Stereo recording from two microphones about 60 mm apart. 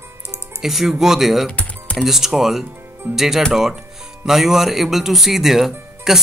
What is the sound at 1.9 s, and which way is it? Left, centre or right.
Speech, centre.